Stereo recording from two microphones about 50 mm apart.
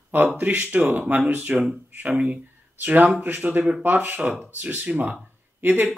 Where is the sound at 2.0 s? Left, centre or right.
Right.